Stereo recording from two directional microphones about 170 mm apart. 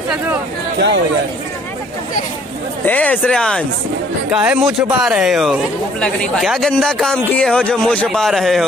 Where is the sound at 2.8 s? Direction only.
10° left (ahead or behind).